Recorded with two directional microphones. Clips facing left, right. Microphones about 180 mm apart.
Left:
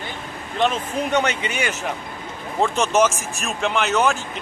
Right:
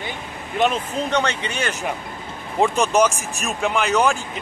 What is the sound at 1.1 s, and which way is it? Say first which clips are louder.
Speech: left 1 dB; 15° left (ahead or behind).